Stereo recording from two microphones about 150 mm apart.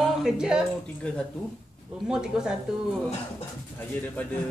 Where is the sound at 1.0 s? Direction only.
5° left (ahead or behind).